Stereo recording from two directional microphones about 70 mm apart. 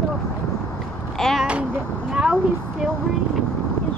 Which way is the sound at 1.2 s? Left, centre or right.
Centre.